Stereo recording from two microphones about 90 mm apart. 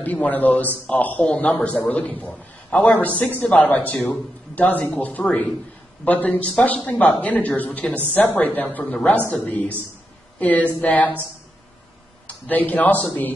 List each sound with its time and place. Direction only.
0.0 s a man's voice: 20° left (ahead or behind)
12.3 s a man's voice: 20° left (ahead or behind)